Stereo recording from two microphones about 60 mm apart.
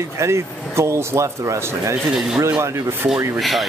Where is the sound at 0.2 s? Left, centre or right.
Right.